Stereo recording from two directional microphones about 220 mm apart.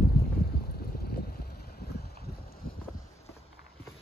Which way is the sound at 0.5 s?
45° left (ahead or behind).